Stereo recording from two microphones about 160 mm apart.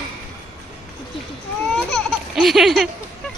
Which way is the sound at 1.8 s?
Centre (ahead or behind).